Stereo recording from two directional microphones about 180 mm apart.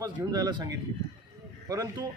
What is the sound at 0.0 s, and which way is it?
Speech, 20° right (ahead or behind).